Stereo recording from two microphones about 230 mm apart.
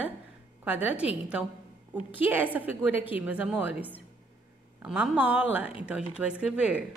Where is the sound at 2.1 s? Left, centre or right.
Centre.